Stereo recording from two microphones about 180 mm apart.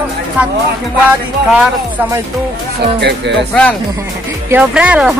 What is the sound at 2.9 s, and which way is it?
Speech, 70° right (ahead or behind).